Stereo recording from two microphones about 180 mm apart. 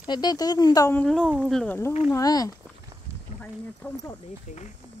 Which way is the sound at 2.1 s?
20° left (ahead or behind).